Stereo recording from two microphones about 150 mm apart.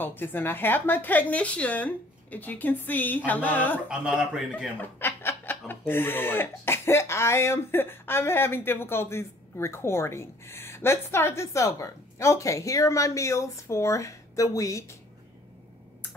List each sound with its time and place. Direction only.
0.0 s speech: 15° left (ahead or behind)
4.0 s speech: 10° right (ahead or behind)
4.9 s speech: 15° left (ahead or behind)